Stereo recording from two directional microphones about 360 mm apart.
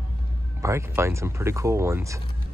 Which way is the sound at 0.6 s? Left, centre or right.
Centre.